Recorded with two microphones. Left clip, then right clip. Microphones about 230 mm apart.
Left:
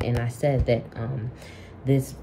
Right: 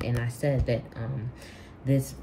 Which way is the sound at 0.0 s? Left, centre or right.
Centre.